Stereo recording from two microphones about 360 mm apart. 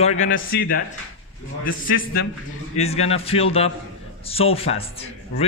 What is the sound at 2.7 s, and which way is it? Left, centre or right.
A man's voice, centre.